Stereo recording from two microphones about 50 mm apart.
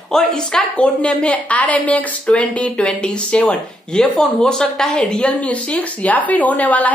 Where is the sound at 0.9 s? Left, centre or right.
Left.